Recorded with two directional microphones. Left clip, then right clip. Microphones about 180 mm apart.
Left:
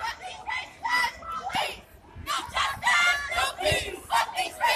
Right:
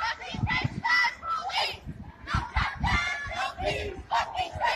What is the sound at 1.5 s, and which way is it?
Children playing, 35° left (ahead or behind).